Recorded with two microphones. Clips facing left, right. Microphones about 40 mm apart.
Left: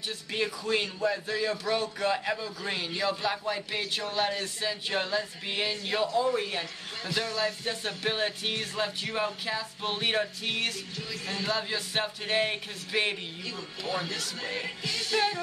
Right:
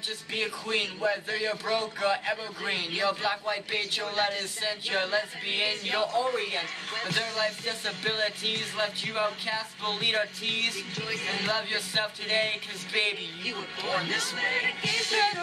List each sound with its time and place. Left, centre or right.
0.3 s speech: centre
2.6 s speech: right
7.2 s speech: right
7.6 s speech: centre
11.0 s music: right
11.5 s speech: centre
13.5 s music: right